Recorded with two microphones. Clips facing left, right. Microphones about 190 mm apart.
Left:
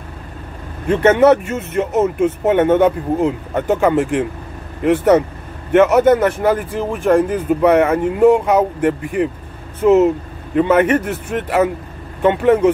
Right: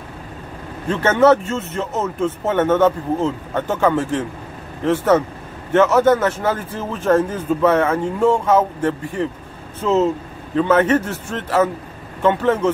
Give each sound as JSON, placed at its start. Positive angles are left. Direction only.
{"t": 0.8, "sound": "speech", "side_deg": 15}